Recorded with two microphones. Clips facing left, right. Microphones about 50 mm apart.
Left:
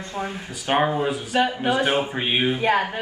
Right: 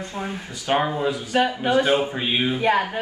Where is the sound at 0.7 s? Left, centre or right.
Left.